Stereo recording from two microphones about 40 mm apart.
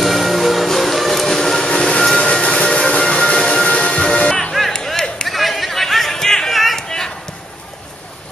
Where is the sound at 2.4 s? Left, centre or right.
Left.